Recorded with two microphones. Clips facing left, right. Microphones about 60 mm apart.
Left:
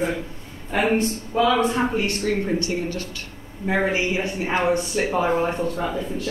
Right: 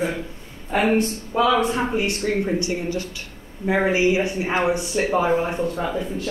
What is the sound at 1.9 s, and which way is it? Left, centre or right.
Speech, centre.